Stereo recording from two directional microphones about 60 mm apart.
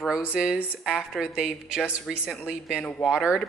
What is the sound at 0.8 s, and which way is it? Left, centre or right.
A woman's voice, centre.